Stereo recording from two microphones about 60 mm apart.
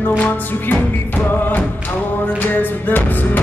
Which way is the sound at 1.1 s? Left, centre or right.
Left.